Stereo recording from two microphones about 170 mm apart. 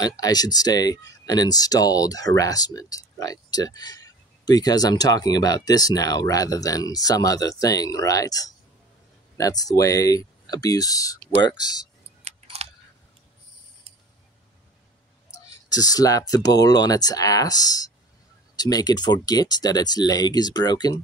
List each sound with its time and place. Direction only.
0.2 s speech: 20° left (ahead or behind)
12.3 s keys jangling: 40° right (ahead or behind)
15.3 s speech: 20° left (ahead or behind)